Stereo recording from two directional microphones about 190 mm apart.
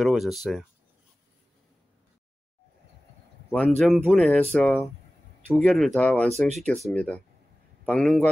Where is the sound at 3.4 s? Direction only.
5° left (ahead or behind).